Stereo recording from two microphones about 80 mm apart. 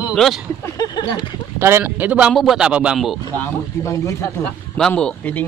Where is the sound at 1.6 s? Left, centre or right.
Right.